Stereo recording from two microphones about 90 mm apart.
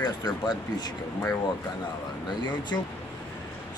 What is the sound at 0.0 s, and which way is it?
Speech, 50° left (ahead or behind).